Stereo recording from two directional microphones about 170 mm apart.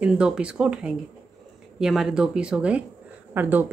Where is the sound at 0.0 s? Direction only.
5° right (ahead or behind).